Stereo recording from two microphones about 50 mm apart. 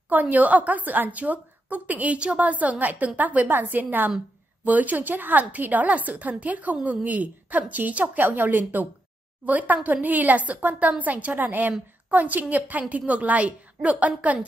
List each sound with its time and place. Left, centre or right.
0.1 s a woman's voice: right